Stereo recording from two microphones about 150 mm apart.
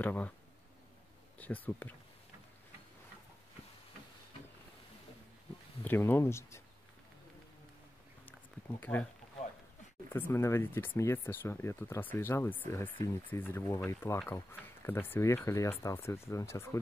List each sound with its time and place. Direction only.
0.0 s speech: 10° left (ahead or behind)
1.4 s speech: 10° left (ahead or behind)
5.9 s speech: 15° left (ahead or behind)
8.3 s a sound: 10° left (ahead or behind)
10.1 s speech: 15° left (ahead or behind)